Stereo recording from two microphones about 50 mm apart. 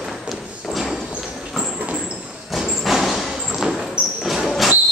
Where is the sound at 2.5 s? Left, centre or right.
Centre.